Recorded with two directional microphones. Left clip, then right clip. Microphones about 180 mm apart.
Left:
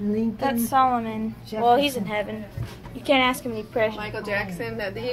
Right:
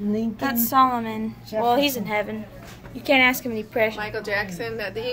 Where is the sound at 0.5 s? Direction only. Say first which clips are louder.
Right 1 dB; 20° right (ahead or behind).